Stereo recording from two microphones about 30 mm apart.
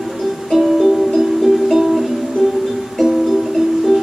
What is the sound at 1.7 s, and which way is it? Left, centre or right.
Music, centre.